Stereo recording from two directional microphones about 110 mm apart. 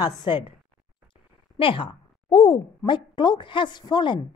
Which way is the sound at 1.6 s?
50° left (ahead or behind).